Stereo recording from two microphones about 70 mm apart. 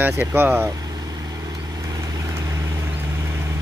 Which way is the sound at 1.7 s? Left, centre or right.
Right.